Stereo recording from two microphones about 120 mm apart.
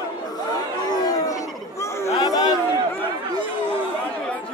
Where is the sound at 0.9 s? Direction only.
30° left (ahead or behind).